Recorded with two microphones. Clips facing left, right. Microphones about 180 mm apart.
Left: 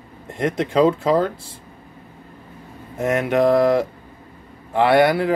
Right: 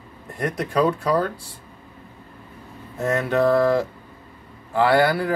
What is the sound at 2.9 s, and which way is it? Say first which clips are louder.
Speech: left 2 dB; 20° left (ahead or behind).